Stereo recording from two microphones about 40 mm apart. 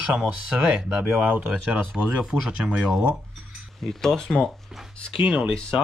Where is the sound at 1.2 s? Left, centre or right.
Right.